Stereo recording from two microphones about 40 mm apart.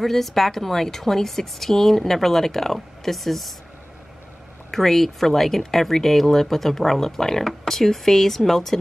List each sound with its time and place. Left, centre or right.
0.0 s speech: centre
4.6 s speech: centre